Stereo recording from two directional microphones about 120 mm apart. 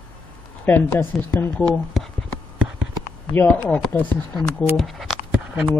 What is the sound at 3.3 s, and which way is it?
A man's voice, 15° left (ahead or behind).